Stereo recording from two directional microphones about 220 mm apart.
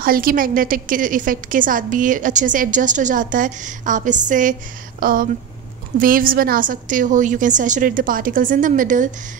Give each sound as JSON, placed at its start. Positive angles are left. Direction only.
{"t": 0.0, "sound": "a woman's voice", "side_deg": -40}